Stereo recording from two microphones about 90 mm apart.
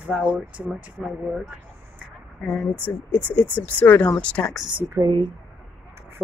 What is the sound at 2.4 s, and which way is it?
Speech, 10° left (ahead or behind).